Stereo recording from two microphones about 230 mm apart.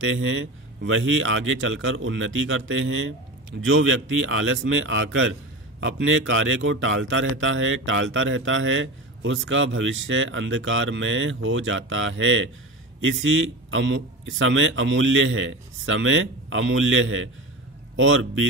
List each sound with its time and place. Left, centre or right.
0.0 s speech: right